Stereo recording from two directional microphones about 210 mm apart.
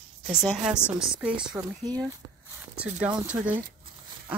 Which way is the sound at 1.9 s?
20° right (ahead or behind).